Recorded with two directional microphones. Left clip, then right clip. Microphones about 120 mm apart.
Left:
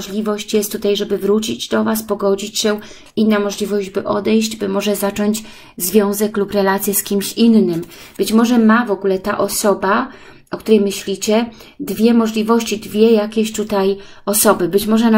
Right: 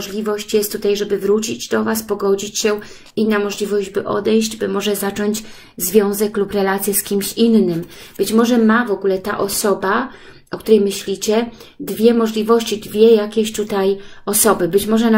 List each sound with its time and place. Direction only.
0.1 s a woman's voice: 45° left (ahead or behind)
1.9 s speech: 20° left (ahead or behind)
3.2 s a woman's voice: 50° left (ahead or behind)
11.1 s a woman's voice: 40° left (ahead or behind)